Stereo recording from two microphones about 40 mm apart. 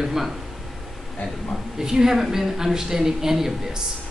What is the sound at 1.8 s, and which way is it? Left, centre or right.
A woman's voice, centre.